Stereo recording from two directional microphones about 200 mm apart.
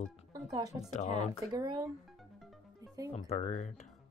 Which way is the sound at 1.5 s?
20° right (ahead or behind).